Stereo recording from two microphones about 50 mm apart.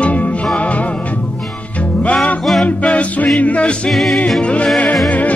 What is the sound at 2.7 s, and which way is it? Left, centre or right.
Music, left.